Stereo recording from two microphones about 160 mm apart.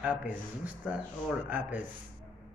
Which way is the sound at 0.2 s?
10° right (ahead or behind).